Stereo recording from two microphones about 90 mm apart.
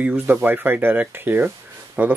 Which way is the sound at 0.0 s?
15° right (ahead or behind).